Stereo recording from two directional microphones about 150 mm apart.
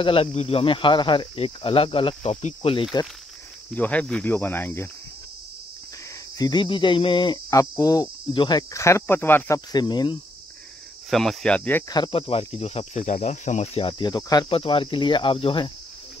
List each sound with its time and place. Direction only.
0.0 s speech: 40° left (ahead or behind)
3.7 s speech: 10° left (ahead or behind)
6.3 s speech: 25° left (ahead or behind)
9.7 s speech: 30° left (ahead or behind)
11.1 s speech: centre (ahead or behind)
11.9 s speech: 35° left (ahead or behind)
14.5 s speech: 35° left (ahead or behind)